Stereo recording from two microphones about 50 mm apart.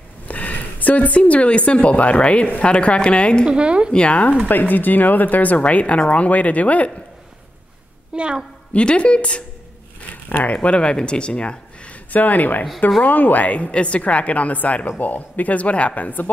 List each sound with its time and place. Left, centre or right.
0.3 s speech: left
3.4 s a woman's voice: right
3.9 s speech: left
4.5 s speech: left
8.1 s a woman's voice: centre
8.7 s speech: left